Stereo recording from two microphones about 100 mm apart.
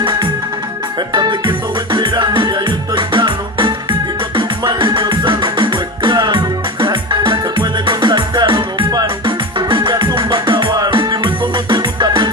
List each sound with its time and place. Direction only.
1.1 s music: 50° right (ahead or behind)